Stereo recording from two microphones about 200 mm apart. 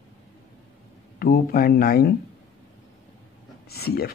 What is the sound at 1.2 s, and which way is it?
Speech, 45° left (ahead or behind).